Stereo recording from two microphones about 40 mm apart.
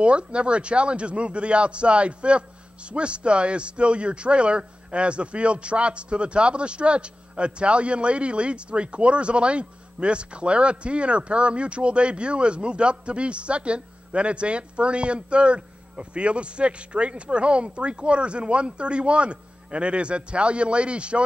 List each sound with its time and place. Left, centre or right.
0.0 s a man's voice: right